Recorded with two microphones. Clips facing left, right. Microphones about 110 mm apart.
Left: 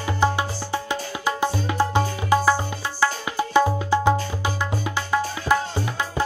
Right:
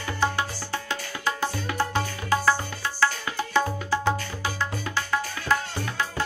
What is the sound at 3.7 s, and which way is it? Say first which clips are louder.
Music: left 6 dB; 15° left (ahead or behind).